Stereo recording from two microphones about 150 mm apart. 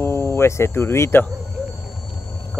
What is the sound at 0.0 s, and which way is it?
Speech, 15° left (ahead or behind).